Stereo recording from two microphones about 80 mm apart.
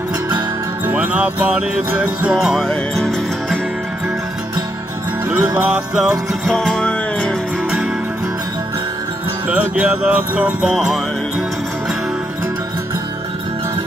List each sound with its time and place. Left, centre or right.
0.8 s music: centre
2.3 s music: centre
5.3 s music: right
5.9 s music: centre
6.5 s music: centre
9.5 s music: centre
10.7 s music: centre